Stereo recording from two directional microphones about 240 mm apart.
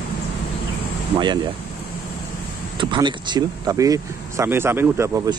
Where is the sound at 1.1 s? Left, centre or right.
Centre.